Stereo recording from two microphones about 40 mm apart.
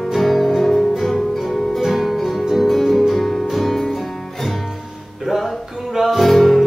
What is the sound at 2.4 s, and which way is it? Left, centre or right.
Music, centre.